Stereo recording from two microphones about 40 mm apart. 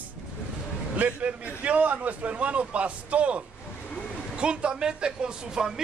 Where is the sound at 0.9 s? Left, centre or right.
Right.